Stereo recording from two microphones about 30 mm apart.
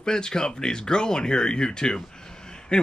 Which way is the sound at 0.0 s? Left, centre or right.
Left.